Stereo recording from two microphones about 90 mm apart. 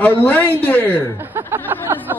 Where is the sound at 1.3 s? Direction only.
25° right (ahead or behind).